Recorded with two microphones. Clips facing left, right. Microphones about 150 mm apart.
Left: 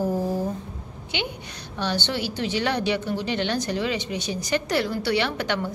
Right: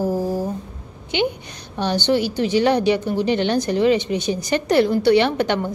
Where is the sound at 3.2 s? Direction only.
50° right (ahead or behind).